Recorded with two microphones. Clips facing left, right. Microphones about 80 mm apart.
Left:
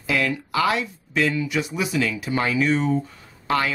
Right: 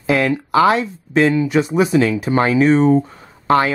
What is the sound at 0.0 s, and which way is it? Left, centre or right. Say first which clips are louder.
Speech: right 7 dB; right.